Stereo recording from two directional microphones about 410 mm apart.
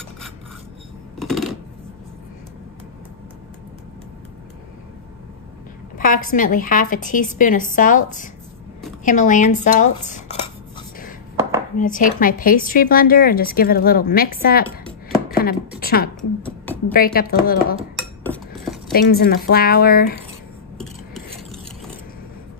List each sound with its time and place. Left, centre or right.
1.2 s coin: centre
5.9 s a woman's voice: centre
11.7 s a woman's voice: centre
15.3 s a sound: left
16.2 s a sound: centre
16.9 s a woman's voice: left
17.9 s cutlery: centre
18.9 s a woman's voice: left
20.7 s a sound: centre